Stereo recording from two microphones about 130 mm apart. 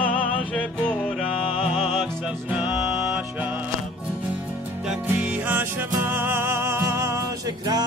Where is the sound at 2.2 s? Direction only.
5° right (ahead or behind).